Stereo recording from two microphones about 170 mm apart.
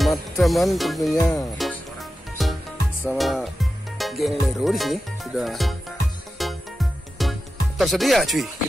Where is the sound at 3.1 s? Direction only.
Centre (ahead or behind).